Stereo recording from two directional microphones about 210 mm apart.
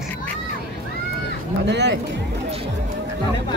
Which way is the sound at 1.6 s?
55° right (ahead or behind).